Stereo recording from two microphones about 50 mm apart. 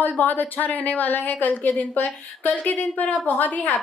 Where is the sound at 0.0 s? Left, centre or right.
Left.